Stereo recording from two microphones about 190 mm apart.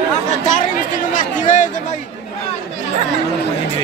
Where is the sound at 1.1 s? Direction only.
40° left (ahead or behind).